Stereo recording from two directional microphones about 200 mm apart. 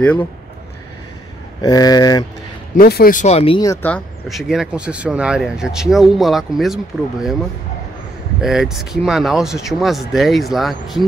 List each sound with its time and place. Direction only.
0.0 s speech: 5° left (ahead or behind)
1.6 s speech: 20° left (ahead or behind)
2.7 s speech: 50° left (ahead or behind); by 3.6 s 30° left (ahead or behind)
3.8 s speech: 5° left (ahead or behind)
8.4 s speech: centre (ahead or behind)